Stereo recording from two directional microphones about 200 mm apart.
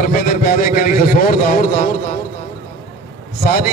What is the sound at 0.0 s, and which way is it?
Speech, 45° left (ahead or behind).